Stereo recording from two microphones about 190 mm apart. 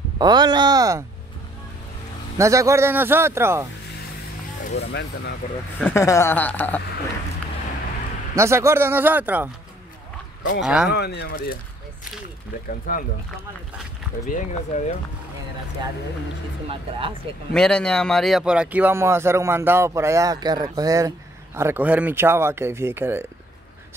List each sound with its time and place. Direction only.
0.2 s speech: 20° right (ahead or behind)
2.3 s speech: 15° right (ahead or behind)
4.7 s speech: 60° left (ahead or behind)
5.9 s speech: 15° left (ahead or behind)
8.4 s speech: 15° right (ahead or behind)
10.6 s speech: 5° right (ahead or behind)
10.9 s speech: 60° left (ahead or behind)
12.9 s speech: 50° left (ahead or behind)
14.3 s speech: 40° left (ahead or behind)
17.5 s speech: 5° left (ahead or behind); by 23.2 s 10° right (ahead or behind)